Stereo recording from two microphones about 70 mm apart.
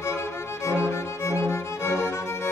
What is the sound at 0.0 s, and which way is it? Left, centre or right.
Music, left.